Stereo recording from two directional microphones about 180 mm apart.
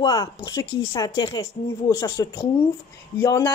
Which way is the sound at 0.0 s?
20° left (ahead or behind).